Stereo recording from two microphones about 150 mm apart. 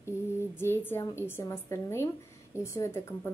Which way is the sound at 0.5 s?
15° left (ahead or behind).